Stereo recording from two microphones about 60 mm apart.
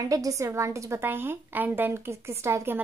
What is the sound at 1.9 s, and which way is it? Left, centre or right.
Speech, right.